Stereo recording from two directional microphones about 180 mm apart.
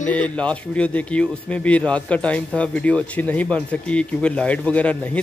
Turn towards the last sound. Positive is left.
turn(degrees=5)  # may be behind; listen again after turning